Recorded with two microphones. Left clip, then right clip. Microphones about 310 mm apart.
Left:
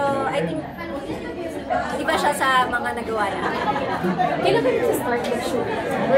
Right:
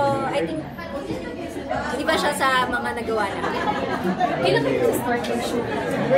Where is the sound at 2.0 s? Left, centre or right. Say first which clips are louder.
Right 1 dB; centre.